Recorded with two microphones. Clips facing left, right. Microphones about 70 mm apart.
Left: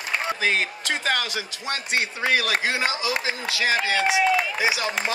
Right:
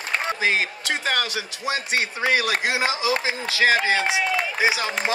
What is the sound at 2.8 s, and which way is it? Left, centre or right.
Speech, right.